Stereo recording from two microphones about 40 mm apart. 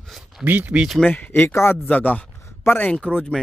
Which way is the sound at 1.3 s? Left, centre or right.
Left.